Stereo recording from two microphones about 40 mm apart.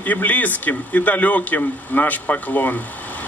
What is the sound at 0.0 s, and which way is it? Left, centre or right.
A man's voice, left.